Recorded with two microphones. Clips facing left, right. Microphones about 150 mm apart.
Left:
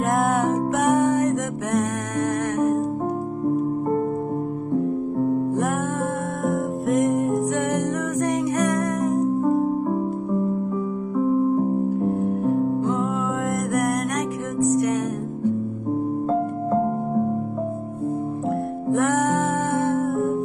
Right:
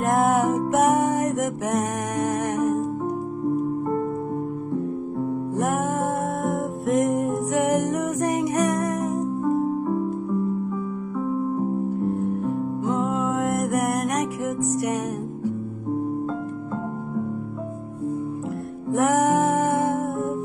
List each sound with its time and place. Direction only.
0.0 s music: centre (ahead or behind)
6.4 s music: centre (ahead or behind)
12.2 s music: 5° right (ahead or behind)
16.3 s music: 50° left (ahead or behind)
18.9 s music: 10° right (ahead or behind)